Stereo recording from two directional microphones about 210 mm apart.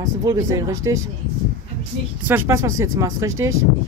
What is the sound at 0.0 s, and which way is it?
Speech, 15° right (ahead or behind).